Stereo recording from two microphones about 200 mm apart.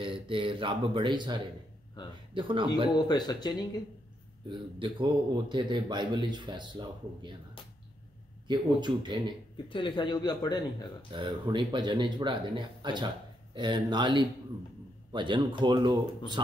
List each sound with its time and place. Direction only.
0.0 s a man's voice: 25° right (ahead or behind)
2.9 s speech: 20° left (ahead or behind)
4.5 s a man's voice: 25° right (ahead or behind)
8.5 s a man's voice: 20° right (ahead or behind)
9.7 s speech: 25° left (ahead or behind)
11.1 s a man's voice: 25° right (ahead or behind)